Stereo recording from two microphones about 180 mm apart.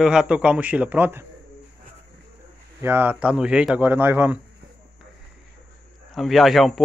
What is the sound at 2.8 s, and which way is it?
Speech, 10° right (ahead or behind).